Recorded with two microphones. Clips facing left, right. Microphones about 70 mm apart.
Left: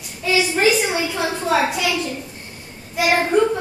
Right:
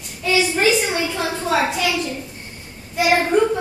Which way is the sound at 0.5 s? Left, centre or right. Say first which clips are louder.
Left 1 dB; centre.